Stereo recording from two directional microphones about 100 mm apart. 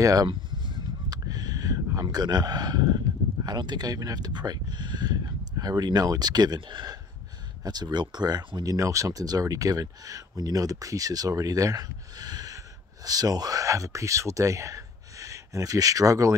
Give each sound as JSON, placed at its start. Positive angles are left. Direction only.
{"t": 0.0, "sound": "speech", "side_deg": -35}
{"t": 0.3, "sound": "fowl", "side_deg": -50}
{"t": 3.4, "sound": "speech", "side_deg": -45}